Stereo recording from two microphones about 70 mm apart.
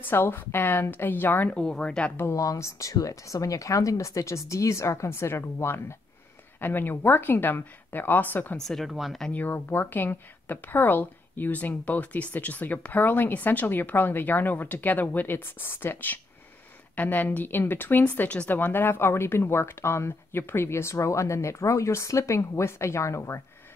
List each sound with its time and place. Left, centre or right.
0.0 s a woman's voice: left
1.5 s speech: centre
2.3 s a woman's voice: left
8.5 s speech: centre
9.3 s a woman's voice: left